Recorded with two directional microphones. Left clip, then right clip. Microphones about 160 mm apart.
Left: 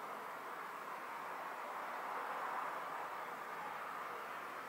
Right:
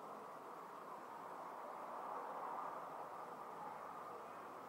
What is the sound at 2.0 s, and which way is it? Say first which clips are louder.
Vehicle: left 4 dB; 20° right (ahead or behind).